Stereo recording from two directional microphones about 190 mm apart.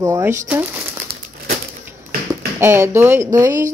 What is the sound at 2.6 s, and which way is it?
Speech, 15° right (ahead or behind).